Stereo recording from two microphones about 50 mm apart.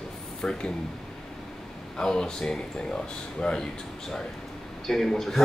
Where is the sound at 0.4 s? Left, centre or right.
Centre.